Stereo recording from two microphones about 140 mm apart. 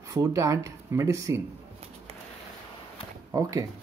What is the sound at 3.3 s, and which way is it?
Speech, 25° right (ahead or behind).